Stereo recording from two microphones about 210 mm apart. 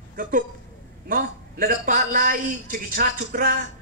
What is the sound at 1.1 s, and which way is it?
A man's voice, 40° right (ahead or behind).